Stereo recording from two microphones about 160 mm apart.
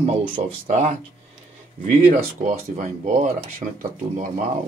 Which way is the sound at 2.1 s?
45° right (ahead or behind).